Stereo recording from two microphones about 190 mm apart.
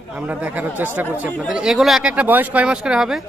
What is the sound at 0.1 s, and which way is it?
Speech, 10° right (ahead or behind).